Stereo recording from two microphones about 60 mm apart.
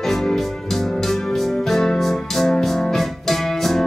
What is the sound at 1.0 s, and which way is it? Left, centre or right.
Music, centre.